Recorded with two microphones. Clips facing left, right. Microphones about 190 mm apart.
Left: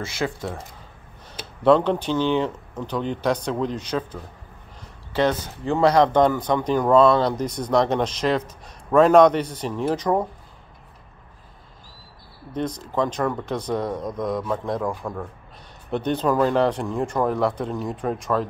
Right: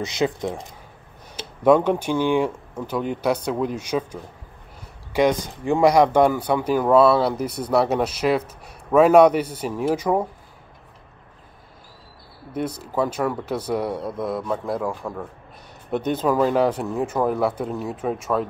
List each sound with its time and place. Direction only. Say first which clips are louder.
0.0 s speech: right 4 dB; 20° right (ahead or behind)
12.5 s speech: even; 10° right (ahead or behind)